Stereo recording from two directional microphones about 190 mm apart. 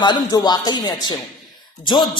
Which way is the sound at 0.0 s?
20° left (ahead or behind).